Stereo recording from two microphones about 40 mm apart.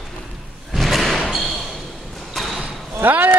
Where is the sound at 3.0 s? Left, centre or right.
Right.